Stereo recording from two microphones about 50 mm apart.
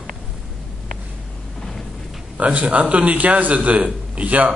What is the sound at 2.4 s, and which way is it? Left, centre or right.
A man's voice, right.